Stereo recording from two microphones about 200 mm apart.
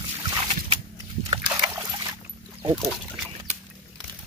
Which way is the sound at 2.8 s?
Centre (ahead or behind).